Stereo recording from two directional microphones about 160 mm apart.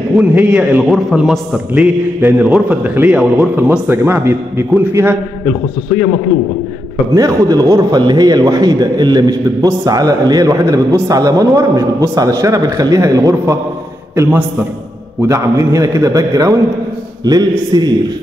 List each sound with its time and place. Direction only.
0.1 s a man's voice: 5° right (ahead or behind)
7.2 s a man's voice: 20° right (ahead or behind)